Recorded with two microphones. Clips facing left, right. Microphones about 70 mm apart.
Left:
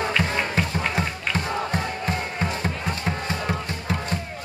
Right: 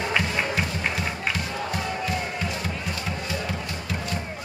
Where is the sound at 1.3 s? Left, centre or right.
Left.